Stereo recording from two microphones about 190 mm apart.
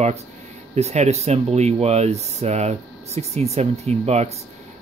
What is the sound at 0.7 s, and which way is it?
Speech, 35° right (ahead or behind).